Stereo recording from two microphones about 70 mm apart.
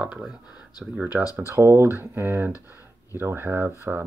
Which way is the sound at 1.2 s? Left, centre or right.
Left.